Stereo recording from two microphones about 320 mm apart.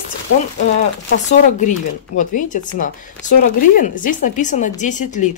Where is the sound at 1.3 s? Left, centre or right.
Left.